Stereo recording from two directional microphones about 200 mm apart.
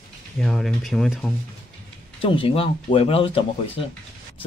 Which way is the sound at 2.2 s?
25° left (ahead or behind).